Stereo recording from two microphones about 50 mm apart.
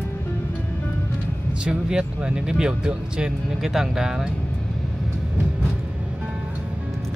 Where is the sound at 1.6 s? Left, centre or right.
Centre.